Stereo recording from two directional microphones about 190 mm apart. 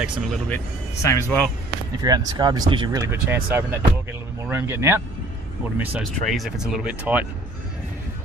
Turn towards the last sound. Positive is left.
turn(degrees=-5)  # may be behind; listen again after turning